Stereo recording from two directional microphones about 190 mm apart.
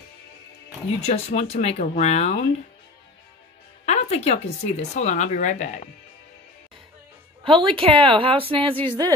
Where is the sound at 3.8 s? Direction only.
35° left (ahead or behind).